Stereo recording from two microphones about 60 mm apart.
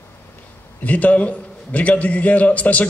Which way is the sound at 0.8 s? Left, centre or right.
Left.